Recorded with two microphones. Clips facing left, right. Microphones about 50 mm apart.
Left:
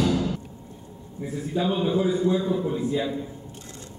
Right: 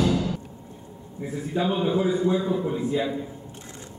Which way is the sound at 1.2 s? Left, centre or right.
Centre.